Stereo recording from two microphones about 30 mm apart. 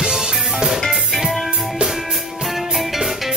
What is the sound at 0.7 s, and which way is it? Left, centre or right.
Music, centre.